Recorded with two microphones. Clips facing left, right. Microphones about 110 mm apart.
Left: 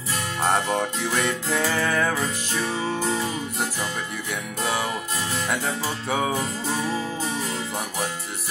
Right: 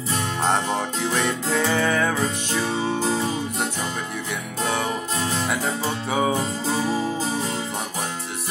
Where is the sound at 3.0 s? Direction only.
25° right (ahead or behind).